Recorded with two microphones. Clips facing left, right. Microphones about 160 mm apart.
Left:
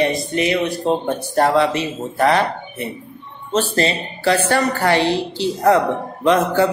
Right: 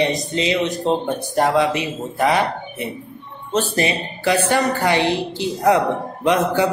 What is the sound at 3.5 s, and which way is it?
Speech, 15° right (ahead or behind).